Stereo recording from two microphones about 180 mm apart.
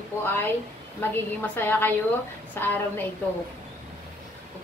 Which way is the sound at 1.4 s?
10° left (ahead or behind).